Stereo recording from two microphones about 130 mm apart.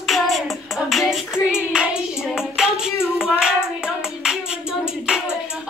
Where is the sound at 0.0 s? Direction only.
Centre (ahead or behind).